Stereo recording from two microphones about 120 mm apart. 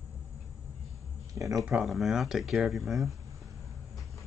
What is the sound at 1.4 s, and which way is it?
Speech, 30° right (ahead or behind).